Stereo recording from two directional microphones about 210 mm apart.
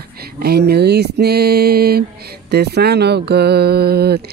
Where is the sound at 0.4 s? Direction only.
50° right (ahead or behind).